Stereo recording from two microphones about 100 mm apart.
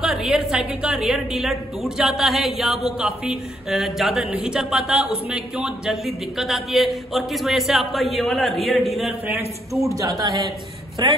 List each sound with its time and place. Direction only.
0.0 s a woman's voice: 5° right (ahead or behind)
9.3 s a man's voice: 30° right (ahead or behind)
9.9 s a man's voice: 40° right (ahead or behind)